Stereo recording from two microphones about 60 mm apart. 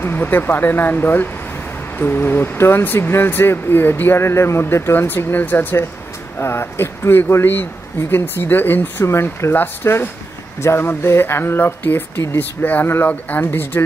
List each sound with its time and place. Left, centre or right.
0.0 s speech: left
9.0 s speech: left